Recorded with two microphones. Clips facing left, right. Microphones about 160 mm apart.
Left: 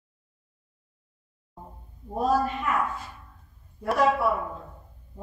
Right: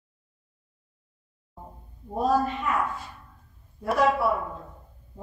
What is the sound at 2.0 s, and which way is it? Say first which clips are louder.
A woman's voice: even; centre (ahead or behind).